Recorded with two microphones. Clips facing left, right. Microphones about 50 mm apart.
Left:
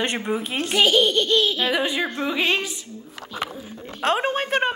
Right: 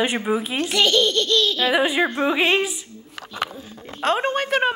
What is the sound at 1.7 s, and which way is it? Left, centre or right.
Speech, centre.